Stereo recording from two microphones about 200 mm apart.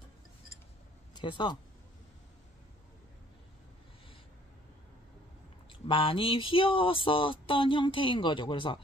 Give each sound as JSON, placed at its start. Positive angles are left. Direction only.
{"t": 1.1, "sound": "speech", "side_deg": 25}
{"t": 5.7, "sound": "speech", "side_deg": 25}